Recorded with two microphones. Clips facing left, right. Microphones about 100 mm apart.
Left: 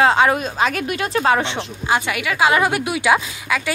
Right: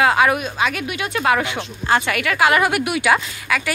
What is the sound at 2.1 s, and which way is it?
Speech, 15° left (ahead or behind).